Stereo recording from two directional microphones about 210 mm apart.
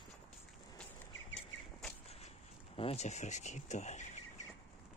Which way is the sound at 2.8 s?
30° left (ahead or behind).